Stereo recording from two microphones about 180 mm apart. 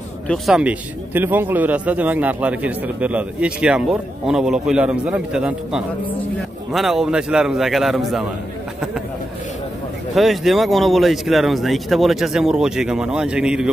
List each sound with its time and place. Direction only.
0.3 s speech: 5° right (ahead or behind)
10.1 s speech: centre (ahead or behind)